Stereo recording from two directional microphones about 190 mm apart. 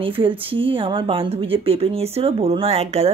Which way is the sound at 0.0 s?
30° right (ahead or behind).